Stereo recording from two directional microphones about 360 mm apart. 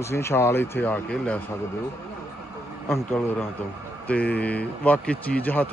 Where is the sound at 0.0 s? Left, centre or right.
Centre.